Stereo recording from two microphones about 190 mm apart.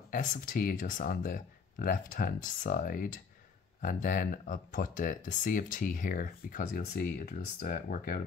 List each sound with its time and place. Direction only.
0.1 s speech: 45° left (ahead or behind)